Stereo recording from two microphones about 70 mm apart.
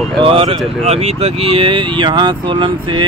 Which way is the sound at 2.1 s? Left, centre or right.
Right.